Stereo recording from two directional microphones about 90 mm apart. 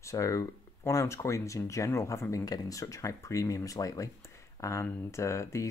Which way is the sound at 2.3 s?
40° left (ahead or behind).